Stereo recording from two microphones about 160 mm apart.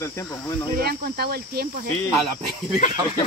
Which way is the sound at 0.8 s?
80° right.